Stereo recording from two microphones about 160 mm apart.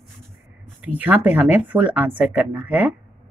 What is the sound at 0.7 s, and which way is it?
Speech, 10° right (ahead or behind).